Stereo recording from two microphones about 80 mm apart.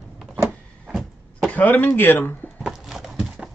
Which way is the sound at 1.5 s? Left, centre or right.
Centre.